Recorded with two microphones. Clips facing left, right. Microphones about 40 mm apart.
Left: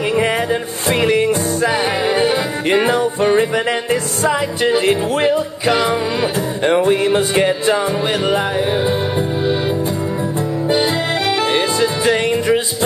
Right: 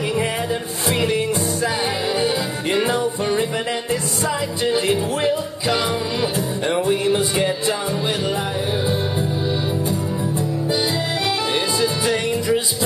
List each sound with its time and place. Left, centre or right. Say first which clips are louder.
0.1 s music: left 8 dB; left
4.2 s music: left 5 dB; left
9.4 s music: left 5 dB; left